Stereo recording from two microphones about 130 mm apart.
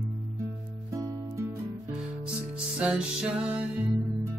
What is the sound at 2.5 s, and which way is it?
Music, 10° right (ahead or behind).